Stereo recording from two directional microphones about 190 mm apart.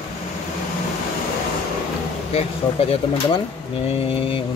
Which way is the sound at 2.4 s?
30° left (ahead or behind).